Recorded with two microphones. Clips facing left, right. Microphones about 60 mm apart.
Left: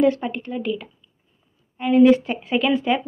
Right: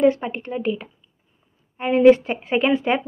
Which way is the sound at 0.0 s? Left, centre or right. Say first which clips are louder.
Right 1 dB; right.